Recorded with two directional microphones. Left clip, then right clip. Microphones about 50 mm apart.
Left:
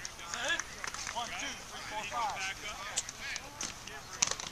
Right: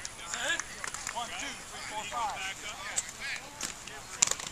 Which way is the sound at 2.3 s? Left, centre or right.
Left.